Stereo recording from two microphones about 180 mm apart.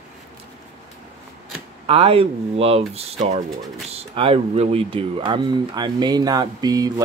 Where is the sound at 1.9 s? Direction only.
30° right (ahead or behind).